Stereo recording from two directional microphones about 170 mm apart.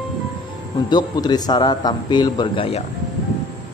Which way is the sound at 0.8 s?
25° left (ahead or behind).